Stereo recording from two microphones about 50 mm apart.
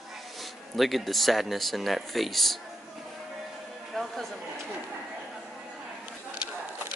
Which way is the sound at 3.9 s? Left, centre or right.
Centre.